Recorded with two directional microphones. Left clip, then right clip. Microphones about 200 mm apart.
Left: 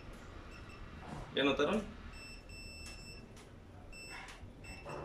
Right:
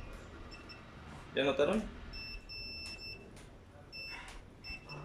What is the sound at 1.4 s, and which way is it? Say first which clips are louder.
Speech: right 1 dB; centre (ahead or behind).